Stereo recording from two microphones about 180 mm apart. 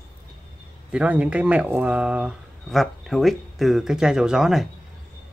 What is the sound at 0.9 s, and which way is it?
Speech, 5° right (ahead or behind).